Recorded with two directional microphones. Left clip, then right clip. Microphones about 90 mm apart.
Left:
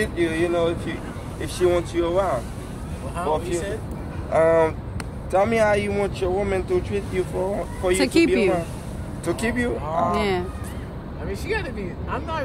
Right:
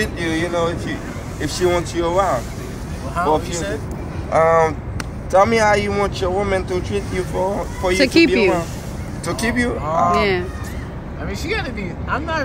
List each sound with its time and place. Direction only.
0.0 s speech: 35° left (ahead or behind)
4.3 s speech: 35° left (ahead or behind)
5.3 s speech: 25° left (ahead or behind)
11.2 s speech: 20° left (ahead or behind)